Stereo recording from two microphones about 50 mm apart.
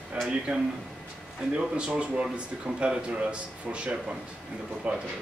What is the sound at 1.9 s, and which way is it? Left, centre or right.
Speech, right.